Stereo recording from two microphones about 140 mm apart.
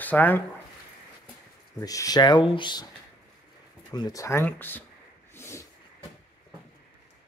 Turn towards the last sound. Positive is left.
turn(degrees=20)  # may be behind; listen again after turning